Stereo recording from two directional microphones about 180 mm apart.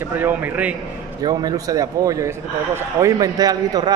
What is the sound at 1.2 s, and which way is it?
A man's voice, 20° right (ahead or behind).